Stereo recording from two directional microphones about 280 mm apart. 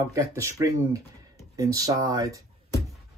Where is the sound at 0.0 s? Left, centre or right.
Centre.